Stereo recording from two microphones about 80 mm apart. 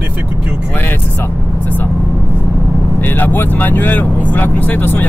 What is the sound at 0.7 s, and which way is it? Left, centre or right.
Speech, left.